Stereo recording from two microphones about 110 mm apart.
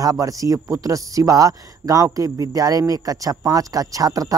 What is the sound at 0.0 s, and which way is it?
Speech, 30° right (ahead or behind).